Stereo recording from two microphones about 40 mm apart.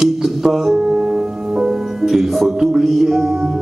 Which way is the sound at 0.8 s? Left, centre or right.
Centre.